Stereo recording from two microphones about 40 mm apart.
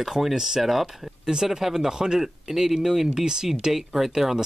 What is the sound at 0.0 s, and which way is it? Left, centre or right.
Speech, centre.